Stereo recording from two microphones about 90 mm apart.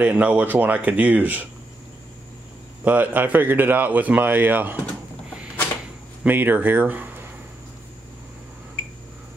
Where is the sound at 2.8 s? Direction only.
20° right (ahead or behind).